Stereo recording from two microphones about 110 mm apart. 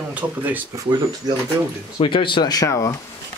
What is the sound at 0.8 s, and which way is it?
Speech, 35° right (ahead or behind).